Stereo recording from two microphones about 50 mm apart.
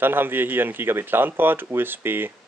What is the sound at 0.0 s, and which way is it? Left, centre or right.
Speech, right.